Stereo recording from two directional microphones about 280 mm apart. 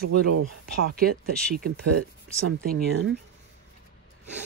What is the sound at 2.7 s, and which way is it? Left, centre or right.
Speech, right.